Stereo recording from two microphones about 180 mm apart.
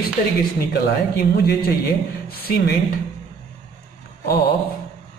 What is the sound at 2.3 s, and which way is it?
Speech, 55° left (ahead or behind).